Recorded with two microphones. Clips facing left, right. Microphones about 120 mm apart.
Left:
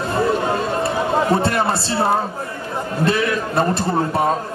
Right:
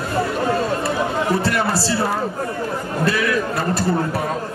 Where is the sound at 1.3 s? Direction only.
25° left (ahead or behind).